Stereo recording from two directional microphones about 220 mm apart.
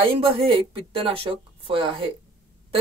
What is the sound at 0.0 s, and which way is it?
Speech, 25° right (ahead or behind).